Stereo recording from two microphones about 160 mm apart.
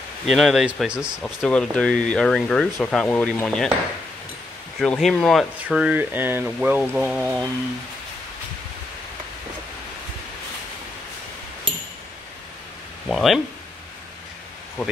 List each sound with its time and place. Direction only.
0.3 s speech: centre (ahead or behind)
4.7 s speech: centre (ahead or behind)
13.1 s speech: centre (ahead or behind)